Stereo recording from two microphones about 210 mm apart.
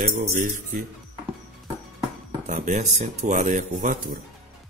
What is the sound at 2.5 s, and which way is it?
Speech, 35° right (ahead or behind).